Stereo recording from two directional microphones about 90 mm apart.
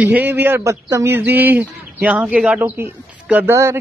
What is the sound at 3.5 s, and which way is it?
Speech, 30° right (ahead or behind).